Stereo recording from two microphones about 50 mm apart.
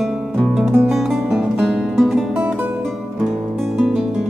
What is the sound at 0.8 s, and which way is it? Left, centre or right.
Music, centre.